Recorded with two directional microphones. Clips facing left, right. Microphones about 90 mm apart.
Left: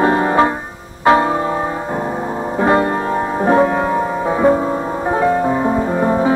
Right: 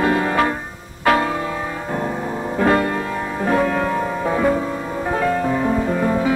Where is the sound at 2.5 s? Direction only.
25° left (ahead or behind).